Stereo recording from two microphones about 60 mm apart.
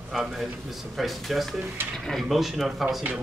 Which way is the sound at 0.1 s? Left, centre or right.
Centre.